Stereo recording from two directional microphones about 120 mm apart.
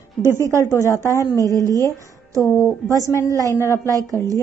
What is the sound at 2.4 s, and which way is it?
Speech, 5° left (ahead or behind).